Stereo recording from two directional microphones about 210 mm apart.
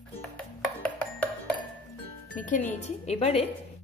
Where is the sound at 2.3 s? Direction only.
35° left (ahead or behind).